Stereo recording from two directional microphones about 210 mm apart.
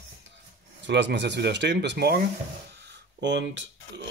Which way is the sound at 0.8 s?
55° right (ahead or behind).